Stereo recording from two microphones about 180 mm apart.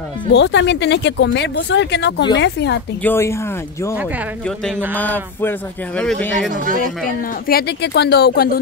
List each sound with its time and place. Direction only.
0.3 s speech: 75° left (ahead or behind)
3.0 s speech: 10° left (ahead or behind)
4.9 s speech: 10° left (ahead or behind)
6.5 s speech: 50° right (ahead or behind)
7.4 s speech: 60° left (ahead or behind)